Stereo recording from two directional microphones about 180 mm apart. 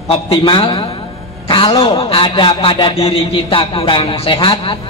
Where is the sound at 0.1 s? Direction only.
30° left (ahead or behind).